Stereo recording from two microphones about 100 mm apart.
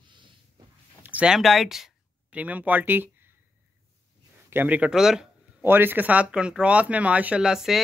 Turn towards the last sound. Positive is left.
turn(degrees=-5)  # may be behind; listen again after turning